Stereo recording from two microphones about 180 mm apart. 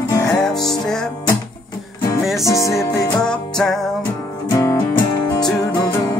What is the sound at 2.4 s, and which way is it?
Music, 15° left (ahead or behind).